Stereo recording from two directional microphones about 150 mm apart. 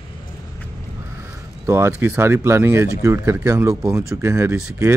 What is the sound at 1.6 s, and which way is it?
Speech, 15° right (ahead or behind).